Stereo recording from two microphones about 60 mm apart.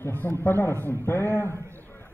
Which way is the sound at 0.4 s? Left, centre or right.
Left.